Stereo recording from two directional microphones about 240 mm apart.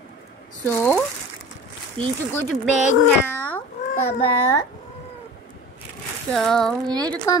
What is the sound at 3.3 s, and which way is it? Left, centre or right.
Cat, centre.